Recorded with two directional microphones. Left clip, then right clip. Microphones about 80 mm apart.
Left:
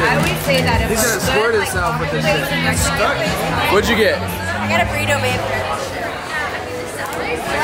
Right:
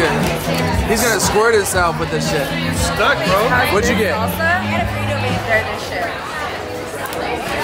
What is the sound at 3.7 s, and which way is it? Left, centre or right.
Speech, centre.